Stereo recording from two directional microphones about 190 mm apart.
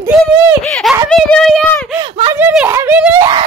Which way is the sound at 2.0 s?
25° right (ahead or behind).